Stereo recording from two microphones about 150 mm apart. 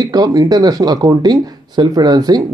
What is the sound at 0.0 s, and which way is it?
Speech, 25° right (ahead or behind).